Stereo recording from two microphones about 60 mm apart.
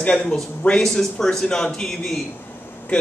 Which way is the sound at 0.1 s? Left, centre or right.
Centre.